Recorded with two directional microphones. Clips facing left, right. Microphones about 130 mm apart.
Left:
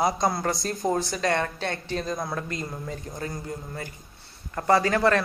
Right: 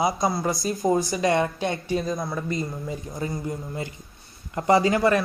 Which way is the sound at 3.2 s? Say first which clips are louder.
Right 6 dB; 25° right (ahead or behind).